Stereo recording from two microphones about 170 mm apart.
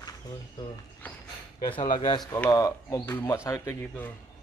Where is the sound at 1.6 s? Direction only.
30° left (ahead or behind).